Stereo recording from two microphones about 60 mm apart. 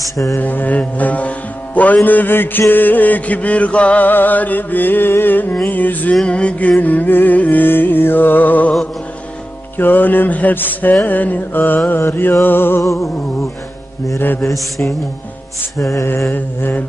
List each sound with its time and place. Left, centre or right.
0.4 s music: left
6.2 s music: centre
9.8 s music: left
12.8 s music: left
14.1 s music: left
15.8 s music: left
16.3 s music: left